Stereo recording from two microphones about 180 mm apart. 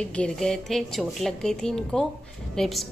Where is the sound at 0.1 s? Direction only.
5° left (ahead or behind).